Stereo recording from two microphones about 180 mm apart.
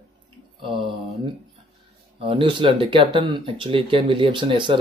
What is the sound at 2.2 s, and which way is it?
Speech, 30° right (ahead or behind).